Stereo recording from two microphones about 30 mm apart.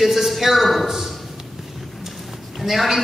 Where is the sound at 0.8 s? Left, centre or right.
Centre.